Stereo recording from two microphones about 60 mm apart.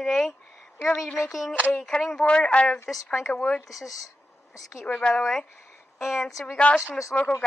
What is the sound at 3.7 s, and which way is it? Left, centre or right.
Speech, left.